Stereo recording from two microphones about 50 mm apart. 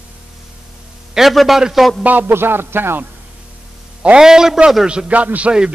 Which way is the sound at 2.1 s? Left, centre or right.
Right.